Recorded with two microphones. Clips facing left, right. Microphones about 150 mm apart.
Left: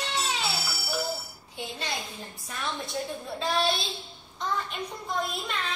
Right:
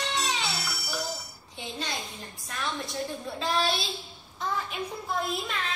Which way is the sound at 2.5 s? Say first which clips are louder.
Even; centre (ahead or behind).